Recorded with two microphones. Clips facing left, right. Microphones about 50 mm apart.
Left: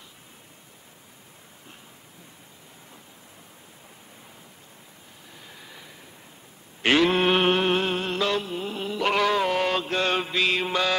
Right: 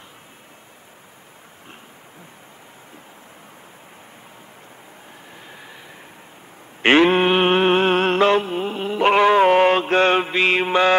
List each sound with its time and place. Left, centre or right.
5.5 s vehicle: right
6.8 s sheep: right
7.2 s a sound: right
7.9 s mantra: right